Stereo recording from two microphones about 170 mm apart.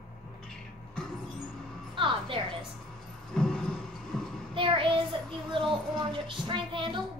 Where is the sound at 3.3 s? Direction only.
5° left (ahead or behind).